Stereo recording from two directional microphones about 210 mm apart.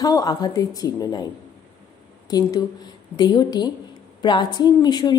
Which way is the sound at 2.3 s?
20° left (ahead or behind).